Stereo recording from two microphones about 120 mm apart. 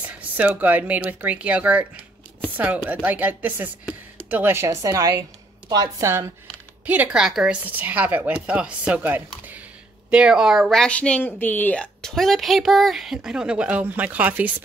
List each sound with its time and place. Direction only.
0.2 s a woman's voice: 15° right (ahead or behind)
6.9 s a woman's voice: 10° right (ahead or behind)